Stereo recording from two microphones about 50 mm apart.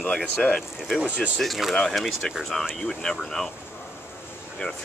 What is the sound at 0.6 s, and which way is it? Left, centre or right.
Speech, centre.